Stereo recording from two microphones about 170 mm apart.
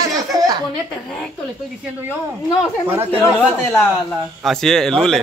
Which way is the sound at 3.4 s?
Centre (ahead or behind).